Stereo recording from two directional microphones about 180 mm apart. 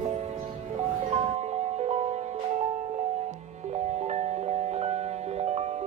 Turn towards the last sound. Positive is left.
turn(degrees=-35)  # may be behind; listen again after turning